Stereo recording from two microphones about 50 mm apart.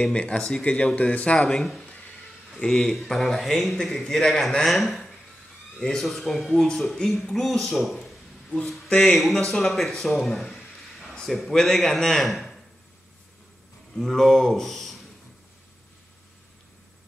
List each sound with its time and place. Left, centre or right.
0.1 s speech: left
1.5 s a man's voice: centre
7.0 s speech: centre
7.3 s a sound: centre
8.6 s a man's voice: centre
13.9 s speech: centre